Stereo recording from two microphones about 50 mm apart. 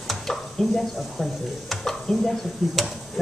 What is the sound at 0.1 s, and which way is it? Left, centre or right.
Speech, centre.